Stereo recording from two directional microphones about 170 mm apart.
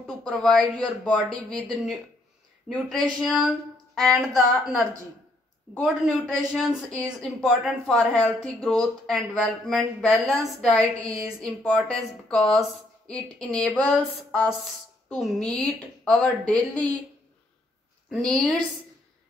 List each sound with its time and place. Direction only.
0.2 s speech: 5° left (ahead or behind)
12.4 s speech: 35° left (ahead or behind)
13.0 s a sound: 5° left (ahead or behind)
18.1 s speech: 5° left (ahead or behind)